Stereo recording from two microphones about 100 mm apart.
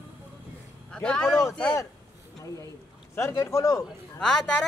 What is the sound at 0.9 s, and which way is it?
Speech, 10° left (ahead or behind).